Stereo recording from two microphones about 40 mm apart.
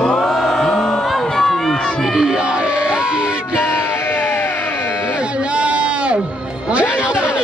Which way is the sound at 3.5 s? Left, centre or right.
Left.